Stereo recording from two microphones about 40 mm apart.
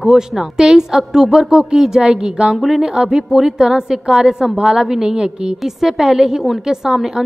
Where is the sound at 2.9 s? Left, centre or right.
Centre.